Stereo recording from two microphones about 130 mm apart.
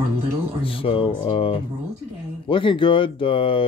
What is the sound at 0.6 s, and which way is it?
Speech, 45° left (ahead or behind).